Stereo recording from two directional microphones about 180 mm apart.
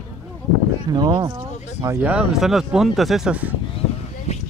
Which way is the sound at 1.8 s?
10° right (ahead or behind).